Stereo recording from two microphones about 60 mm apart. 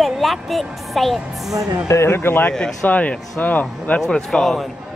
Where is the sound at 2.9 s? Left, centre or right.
Left.